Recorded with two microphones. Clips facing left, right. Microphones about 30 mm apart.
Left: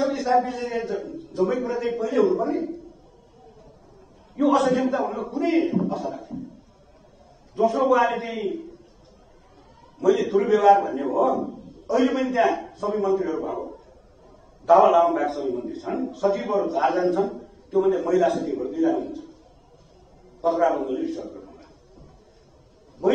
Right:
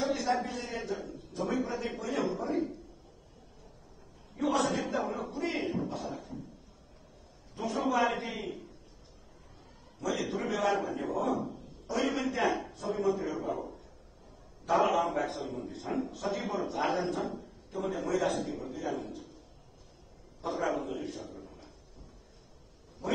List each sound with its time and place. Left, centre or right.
0.0 s a man's voice: centre
4.4 s a man's voice: centre
5.9 s a man's voice: centre
7.6 s a man's voice: centre
10.1 s a man's voice: centre
14.9 s a man's voice: left
15.1 s a man's voice: centre
20.4 s a man's voice: left; by 21.6 s centre